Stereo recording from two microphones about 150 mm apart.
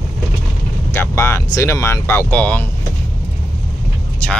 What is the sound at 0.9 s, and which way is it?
Speech, 15° left (ahead or behind).